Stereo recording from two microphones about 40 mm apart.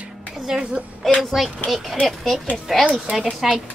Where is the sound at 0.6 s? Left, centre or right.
Right.